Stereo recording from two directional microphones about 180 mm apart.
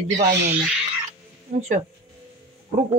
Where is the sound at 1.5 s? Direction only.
35° right (ahead or behind).